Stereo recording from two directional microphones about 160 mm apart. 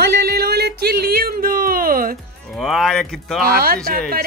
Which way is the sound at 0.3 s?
75° right (ahead or behind).